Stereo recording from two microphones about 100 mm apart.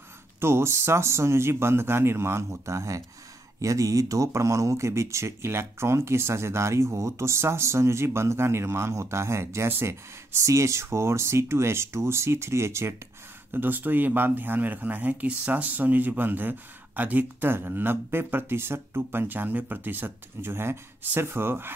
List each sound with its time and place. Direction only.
0.4 s speech: 25° right (ahead or behind)